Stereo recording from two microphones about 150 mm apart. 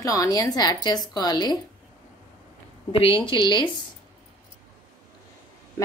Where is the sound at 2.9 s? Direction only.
35° left (ahead or behind).